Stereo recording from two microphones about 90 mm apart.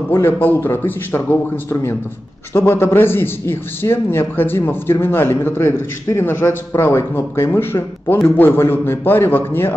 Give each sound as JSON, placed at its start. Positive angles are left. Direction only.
{"t": 0.1, "sound": "a man's voice", "side_deg": 25}